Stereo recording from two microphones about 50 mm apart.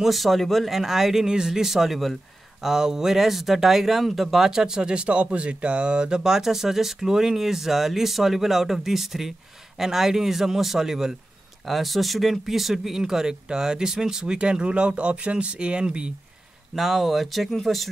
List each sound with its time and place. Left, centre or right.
0.0 s speech: centre; by 16.1 s right
16.7 s speech: centre